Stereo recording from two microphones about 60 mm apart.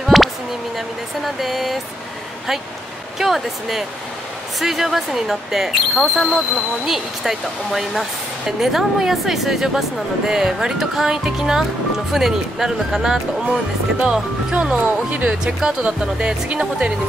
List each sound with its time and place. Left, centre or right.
0.0 s a sound: centre
0.7 s speech: centre
3.2 s speech: centre
14.8 s speech: right
15.2 s speech: centre